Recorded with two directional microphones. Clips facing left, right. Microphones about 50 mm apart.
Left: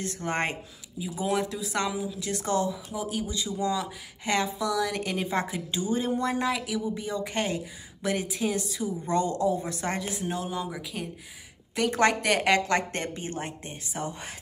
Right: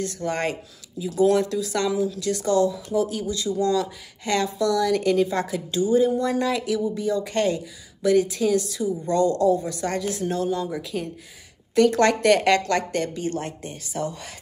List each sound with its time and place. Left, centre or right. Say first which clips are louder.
0.0 s speech: right 4 dB; left
1.0 s speech: right 9 dB; centre
2.7 s speech: right 8 dB; centre
6.4 s speech: right 5 dB; centre
7.0 s speech: right 7 dB; left